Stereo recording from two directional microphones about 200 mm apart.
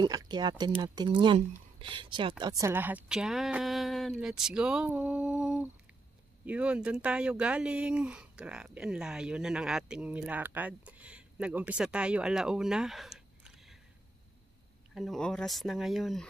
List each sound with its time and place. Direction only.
0.0 s speech: 20° right (ahead or behind)
2.7 s speech: 10° right (ahead or behind)
15.0 s speech: centre (ahead or behind)